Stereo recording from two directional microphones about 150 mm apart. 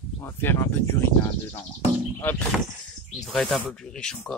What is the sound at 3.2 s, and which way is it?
Speech, centre (ahead or behind).